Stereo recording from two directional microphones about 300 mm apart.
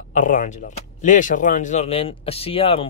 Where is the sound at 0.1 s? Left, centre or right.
Left.